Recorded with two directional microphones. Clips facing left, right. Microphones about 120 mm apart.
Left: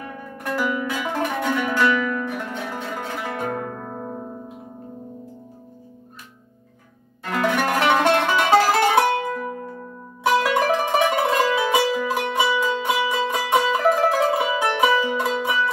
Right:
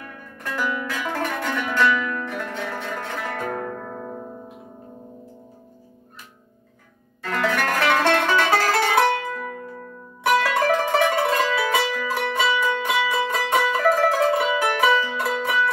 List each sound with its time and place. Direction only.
0.7 s music: 15° left (ahead or behind)
7.3 s music: 15° left (ahead or behind)